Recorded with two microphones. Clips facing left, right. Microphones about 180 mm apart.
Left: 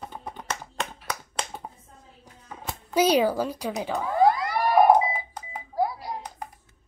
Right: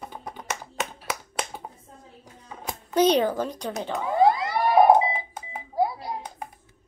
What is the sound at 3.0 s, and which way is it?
A woman's voice, 10° left (ahead or behind).